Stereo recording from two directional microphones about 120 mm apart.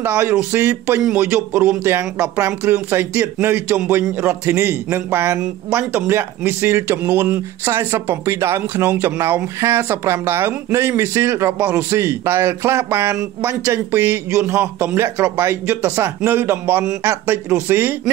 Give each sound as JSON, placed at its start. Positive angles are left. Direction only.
{"t": 0.0, "sound": "a man's voice", "side_deg": -20}